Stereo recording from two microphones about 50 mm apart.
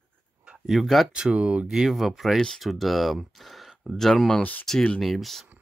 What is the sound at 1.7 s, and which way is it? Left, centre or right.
Speech, centre.